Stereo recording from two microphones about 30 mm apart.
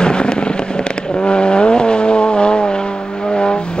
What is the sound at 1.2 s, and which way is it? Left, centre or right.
Vehicle, left.